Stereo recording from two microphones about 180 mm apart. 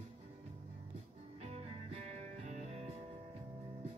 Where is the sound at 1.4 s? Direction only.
35° right (ahead or behind).